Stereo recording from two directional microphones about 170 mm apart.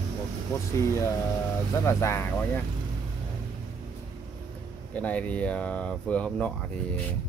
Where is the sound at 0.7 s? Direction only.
15° left (ahead or behind).